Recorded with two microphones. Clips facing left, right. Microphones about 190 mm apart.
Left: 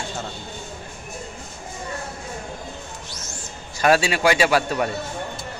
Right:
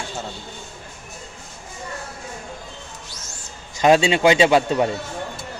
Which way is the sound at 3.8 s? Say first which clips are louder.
Right 3 dB; 20° right (ahead or behind).